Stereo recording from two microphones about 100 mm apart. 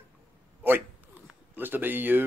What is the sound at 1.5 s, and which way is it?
Speech, 20° right (ahead or behind).